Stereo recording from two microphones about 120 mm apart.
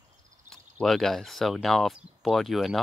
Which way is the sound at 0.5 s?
5° left (ahead or behind).